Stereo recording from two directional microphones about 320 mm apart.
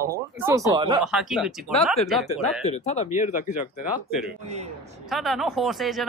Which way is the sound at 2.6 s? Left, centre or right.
Left.